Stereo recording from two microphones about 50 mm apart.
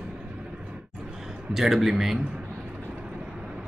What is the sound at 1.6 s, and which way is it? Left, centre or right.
Speech, centre.